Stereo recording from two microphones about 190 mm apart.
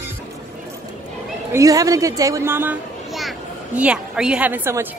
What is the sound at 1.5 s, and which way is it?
A woman's voice, 20° right (ahead or behind).